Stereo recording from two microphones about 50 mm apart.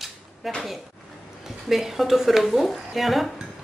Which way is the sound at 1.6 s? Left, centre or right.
Centre.